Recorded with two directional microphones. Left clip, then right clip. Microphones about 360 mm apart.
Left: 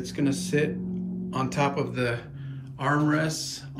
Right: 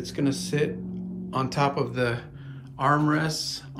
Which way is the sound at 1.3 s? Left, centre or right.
Centre.